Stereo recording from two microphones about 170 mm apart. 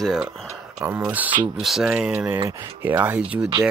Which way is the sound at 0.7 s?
15° right (ahead or behind).